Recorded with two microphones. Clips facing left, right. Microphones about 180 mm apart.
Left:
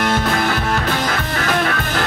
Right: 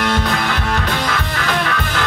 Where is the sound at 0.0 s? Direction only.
45° left (ahead or behind).